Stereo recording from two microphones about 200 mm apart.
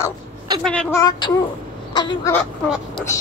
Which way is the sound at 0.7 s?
5° left (ahead or behind).